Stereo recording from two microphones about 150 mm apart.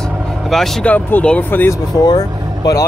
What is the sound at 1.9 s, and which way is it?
Speech, 25° left (ahead or behind).